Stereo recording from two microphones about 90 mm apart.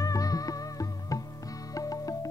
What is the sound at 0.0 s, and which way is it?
Music, 40° left (ahead or behind).